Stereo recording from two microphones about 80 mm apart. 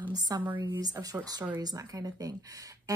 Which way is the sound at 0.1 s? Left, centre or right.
Right.